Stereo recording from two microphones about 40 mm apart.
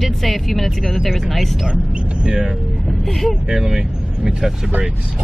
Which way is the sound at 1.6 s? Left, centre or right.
Centre.